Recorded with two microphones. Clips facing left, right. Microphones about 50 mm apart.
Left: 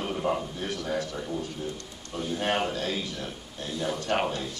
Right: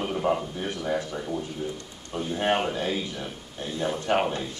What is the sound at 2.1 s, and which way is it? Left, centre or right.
Speech, right.